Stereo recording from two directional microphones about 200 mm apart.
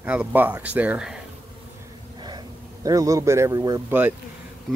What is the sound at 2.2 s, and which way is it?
Speech, 20° right (ahead or behind).